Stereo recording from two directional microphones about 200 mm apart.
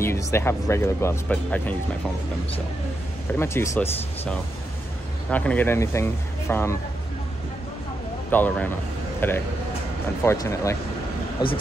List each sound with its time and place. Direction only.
0.0 s speech: 15° left (ahead or behind)
3.3 s speech: 15° left (ahead or behind)
8.3 s speech: 10° left (ahead or behind)